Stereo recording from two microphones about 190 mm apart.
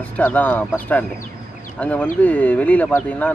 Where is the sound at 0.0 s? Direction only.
10° left (ahead or behind).